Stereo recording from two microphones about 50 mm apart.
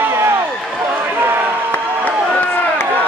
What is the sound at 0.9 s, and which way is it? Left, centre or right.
Run, right.